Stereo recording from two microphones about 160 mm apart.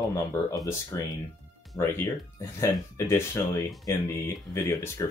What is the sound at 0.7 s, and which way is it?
Speech, 20° left (ahead or behind).